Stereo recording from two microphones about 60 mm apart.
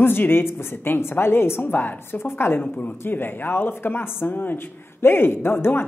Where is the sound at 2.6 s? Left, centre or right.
Left.